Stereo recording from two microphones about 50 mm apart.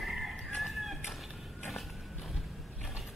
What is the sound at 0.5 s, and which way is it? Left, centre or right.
Chicken, centre.